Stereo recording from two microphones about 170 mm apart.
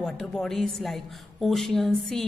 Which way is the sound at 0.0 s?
5° left (ahead or behind).